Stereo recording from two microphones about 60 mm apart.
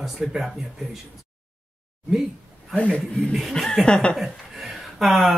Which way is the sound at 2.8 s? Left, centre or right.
Centre.